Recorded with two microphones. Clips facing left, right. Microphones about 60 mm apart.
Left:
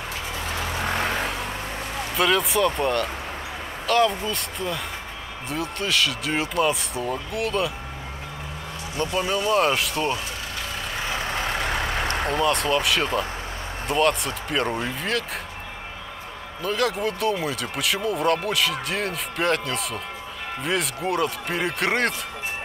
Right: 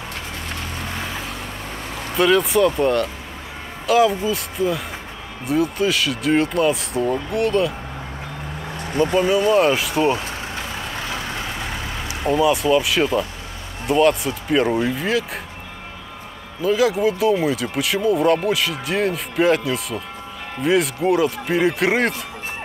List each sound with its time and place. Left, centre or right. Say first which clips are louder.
2.1 s speech: right 5 dB; centre
9.1 s speech: right 5 dB; centre
11.8 s vehicle: left 4 dB; left
12.3 s speech: right 8 dB; centre
16.6 s speech: right 7 dB; centre